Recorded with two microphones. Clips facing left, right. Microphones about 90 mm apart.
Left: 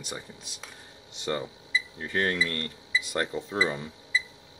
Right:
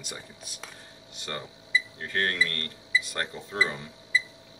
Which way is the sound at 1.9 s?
10° left (ahead or behind).